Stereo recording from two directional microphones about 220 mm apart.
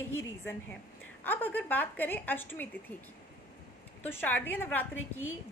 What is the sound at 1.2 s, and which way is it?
A woman's voice, 10° left (ahead or behind).